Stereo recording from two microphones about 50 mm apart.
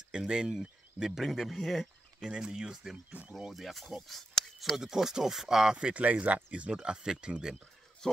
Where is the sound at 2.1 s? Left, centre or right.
Centre.